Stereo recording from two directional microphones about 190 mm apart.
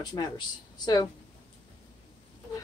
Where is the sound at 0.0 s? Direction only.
20° left (ahead or behind).